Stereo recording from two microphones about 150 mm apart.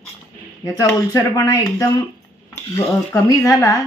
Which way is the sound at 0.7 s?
20° left (ahead or behind).